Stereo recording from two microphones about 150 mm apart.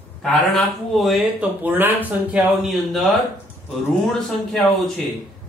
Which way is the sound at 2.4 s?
Centre (ahead or behind).